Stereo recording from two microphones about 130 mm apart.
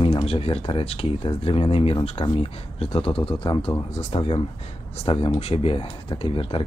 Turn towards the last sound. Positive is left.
turn(degrees=45)  # may be behind; listen again after turning